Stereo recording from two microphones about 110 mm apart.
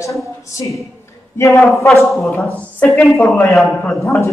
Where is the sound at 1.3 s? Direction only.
20° left (ahead or behind).